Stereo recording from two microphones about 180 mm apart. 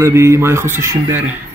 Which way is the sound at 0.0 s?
15° right (ahead or behind).